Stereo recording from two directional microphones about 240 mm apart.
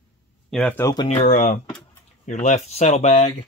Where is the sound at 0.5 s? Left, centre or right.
Centre; by 3.3 s left.